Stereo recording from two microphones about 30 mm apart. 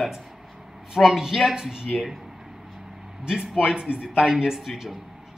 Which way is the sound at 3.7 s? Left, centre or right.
Right.